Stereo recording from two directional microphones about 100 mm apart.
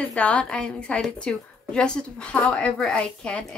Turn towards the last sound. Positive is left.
turn(degrees=10)  # may be behind; listen again after turning